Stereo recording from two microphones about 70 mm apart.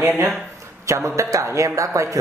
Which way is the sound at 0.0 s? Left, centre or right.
Right.